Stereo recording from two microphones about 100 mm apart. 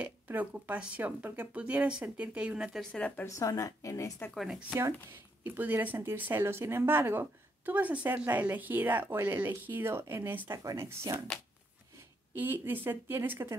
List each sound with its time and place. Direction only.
0.0 s speech: 15° right (ahead or behind)
2.8 s speech: 10° left (ahead or behind)
3.3 s speech: 35° left (ahead or behind)
4.3 s speech: centre (ahead or behind)
5.4 s speech: 20° right (ahead or behind)
12.4 s speech: 20° right (ahead or behind)